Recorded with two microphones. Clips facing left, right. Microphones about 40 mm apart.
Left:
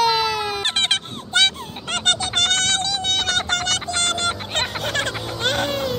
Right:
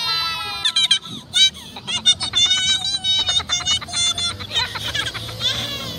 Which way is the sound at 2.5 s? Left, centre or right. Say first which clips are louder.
Even; right.